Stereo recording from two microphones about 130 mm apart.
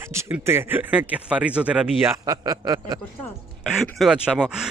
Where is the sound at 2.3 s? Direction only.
30° right (ahead or behind).